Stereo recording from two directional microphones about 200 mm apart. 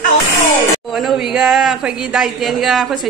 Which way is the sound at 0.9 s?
Centre (ahead or behind).